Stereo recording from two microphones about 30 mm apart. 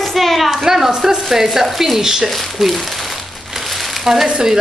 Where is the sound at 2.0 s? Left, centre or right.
Centre.